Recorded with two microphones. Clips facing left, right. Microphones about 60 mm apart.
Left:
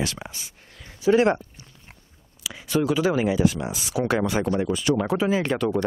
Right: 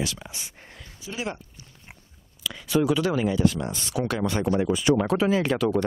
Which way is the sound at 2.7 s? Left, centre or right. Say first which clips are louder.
Even; centre.